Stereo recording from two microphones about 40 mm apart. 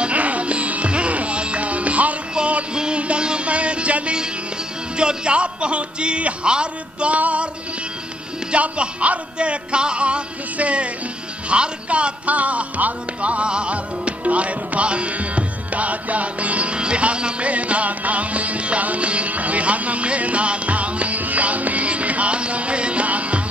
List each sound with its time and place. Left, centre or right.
0.0 s music: right
4.9 s speech: right
7.2 s music: right
8.5 s speech: right
11.4 s music: right